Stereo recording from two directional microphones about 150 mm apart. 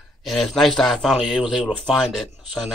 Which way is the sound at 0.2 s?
Centre (ahead or behind).